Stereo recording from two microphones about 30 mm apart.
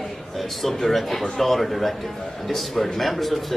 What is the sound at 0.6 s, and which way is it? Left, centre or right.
A man's voice, centre.